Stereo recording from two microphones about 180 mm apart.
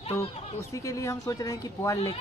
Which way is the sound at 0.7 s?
15° left (ahead or behind).